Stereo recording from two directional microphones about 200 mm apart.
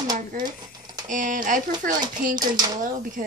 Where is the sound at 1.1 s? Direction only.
40° right (ahead or behind).